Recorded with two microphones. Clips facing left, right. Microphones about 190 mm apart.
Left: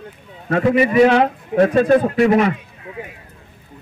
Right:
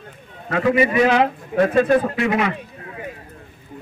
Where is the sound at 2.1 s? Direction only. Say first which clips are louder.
Left 6 dB; 40° left (ahead or behind).